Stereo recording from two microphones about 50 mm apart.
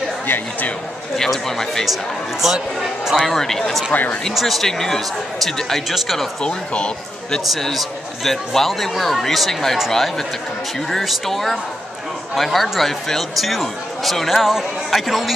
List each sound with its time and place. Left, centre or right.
1.1 s speech: centre
2.4 s speech: centre
3.2 s speech: centre
3.9 s speech: left
4.4 s speech: centre
6.4 s speech: centre
7.5 s speech: centre